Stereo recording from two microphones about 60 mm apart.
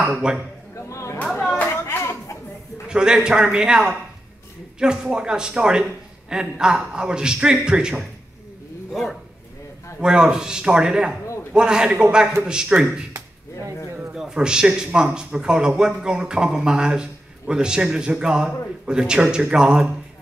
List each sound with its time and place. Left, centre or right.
0.0 s speech: centre
0.7 s a sound: left
1.7 s clapping: left
2.9 s speech: centre
9.9 s speech: centre
14.1 s speech: centre